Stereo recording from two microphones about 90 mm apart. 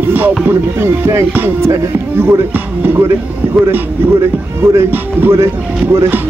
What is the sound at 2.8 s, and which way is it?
Speech, 25° right (ahead or behind).